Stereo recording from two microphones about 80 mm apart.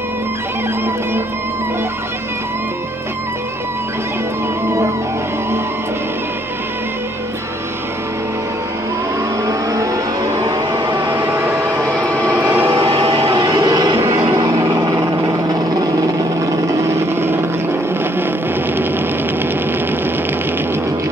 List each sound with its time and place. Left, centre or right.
4.6 s music: right
9.5 s vehicle: right
11.1 s train: right
11.8 s vehicle: centre
12.6 s music: right
13.9 s vehicle: right
16.8 s vehicle: right